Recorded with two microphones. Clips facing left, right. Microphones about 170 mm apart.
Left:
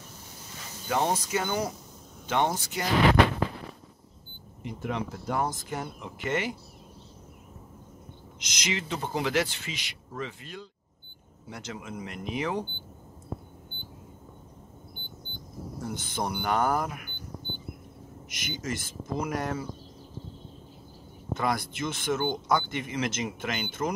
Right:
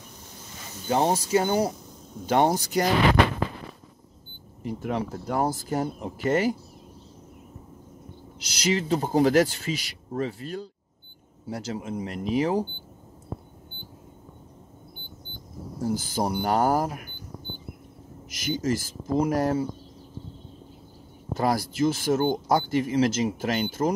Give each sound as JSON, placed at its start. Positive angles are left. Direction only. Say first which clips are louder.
{"t": 0.8, "sound": "speech", "louder": "right 4 dB", "side_deg": -30}
{"t": 4.6, "sound": "speech", "louder": "right 4 dB", "side_deg": -35}
{"t": 8.4, "sound": "speech", "louder": "right 8 dB", "side_deg": -35}
{"t": 15.8, "sound": "speech", "louder": "right 7 dB", "side_deg": -35}
{"t": 18.3, "sound": "speech", "louder": "right 8 dB", "side_deg": -35}
{"t": 21.3, "sound": "speech", "louder": "right 4 dB", "side_deg": -35}